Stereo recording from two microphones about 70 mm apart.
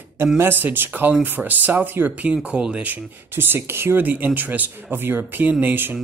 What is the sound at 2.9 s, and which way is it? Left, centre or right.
Speech, right.